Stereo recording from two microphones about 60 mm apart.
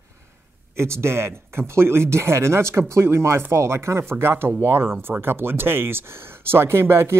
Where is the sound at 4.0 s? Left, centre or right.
Right.